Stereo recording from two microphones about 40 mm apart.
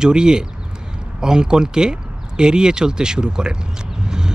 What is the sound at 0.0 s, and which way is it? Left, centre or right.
Speech, centre.